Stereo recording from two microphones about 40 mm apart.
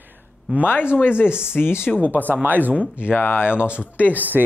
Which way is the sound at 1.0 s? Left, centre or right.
Left.